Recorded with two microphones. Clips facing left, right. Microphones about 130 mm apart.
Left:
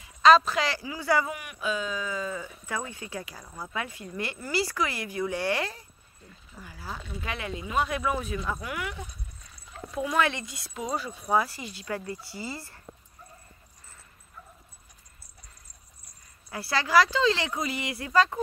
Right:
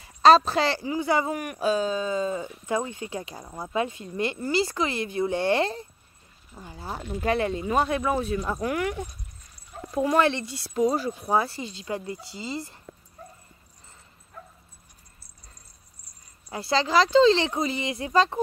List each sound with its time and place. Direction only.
0.0 s speech: 35° right (ahead or behind)
1.3 s speech: 45° right (ahead or behind); by 7.0 s 25° right (ahead or behind)
7.0 s speech: 40° right (ahead or behind)
8.5 s speech: 50° right (ahead or behind); by 12.8 s 20° right (ahead or behind)
16.5 s speech: 20° right (ahead or behind)